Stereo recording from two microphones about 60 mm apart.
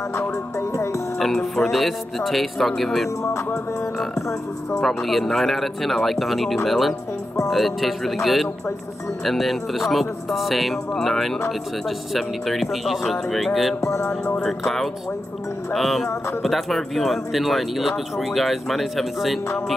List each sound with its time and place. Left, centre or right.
0.6 s music: left
1.2 s speech: centre
4.7 s speech: centre
13.7 s music: left
14.2 s speech: centre
14.6 s speech: centre